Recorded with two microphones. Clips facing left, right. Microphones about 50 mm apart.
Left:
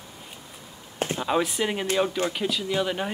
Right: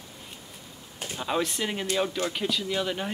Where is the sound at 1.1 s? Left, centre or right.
Centre.